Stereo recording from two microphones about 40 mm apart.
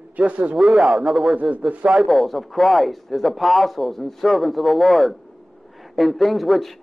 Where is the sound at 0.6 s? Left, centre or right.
Centre.